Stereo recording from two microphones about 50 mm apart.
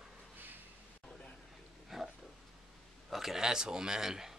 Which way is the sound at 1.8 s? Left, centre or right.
Centre.